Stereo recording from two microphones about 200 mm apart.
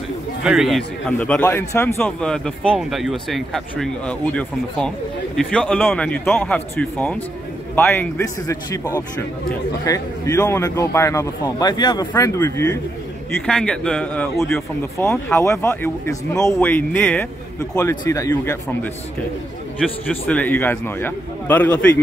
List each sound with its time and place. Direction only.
0.4 s a man's voice: 5° right (ahead or behind); by 8.8 s 15° left (ahead or behind)
9.8 s a man's voice: 15° left (ahead or behind)
13.3 s a man's voice: 5° left (ahead or behind)